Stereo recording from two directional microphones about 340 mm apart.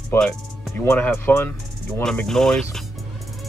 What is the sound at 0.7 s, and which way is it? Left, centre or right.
Speech, centre.